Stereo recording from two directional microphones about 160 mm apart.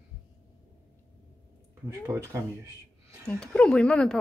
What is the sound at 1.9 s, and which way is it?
Speech, 20° right (ahead or behind).